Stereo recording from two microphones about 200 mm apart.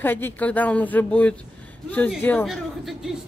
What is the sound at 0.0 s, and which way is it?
Speech, 10° left (ahead or behind).